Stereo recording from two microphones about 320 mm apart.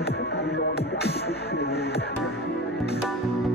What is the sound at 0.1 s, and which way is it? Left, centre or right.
Music, left.